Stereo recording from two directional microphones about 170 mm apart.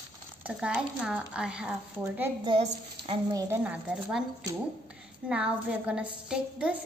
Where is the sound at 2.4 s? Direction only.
30° right (ahead or behind).